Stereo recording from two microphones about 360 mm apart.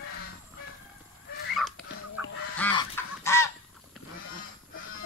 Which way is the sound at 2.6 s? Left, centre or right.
Centre.